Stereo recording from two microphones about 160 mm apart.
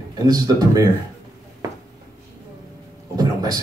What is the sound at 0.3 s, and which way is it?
Speech, 25° right (ahead or behind).